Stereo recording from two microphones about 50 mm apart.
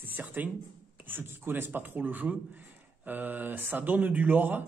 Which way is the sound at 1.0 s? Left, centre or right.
Right.